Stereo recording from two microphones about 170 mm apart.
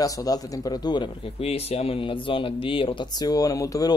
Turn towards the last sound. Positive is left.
turn(degrees=20)  # may be behind; listen again after turning